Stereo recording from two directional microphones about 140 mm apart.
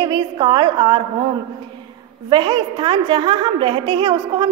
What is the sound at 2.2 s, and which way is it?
A woman's voice, 35° right (ahead or behind).